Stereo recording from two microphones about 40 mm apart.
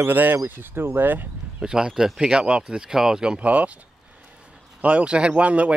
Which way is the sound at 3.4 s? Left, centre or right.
Right.